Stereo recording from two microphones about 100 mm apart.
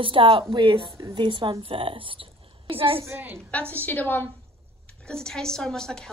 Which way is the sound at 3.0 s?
25° right (ahead or behind).